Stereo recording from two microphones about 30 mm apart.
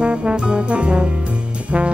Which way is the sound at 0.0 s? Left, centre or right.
Right.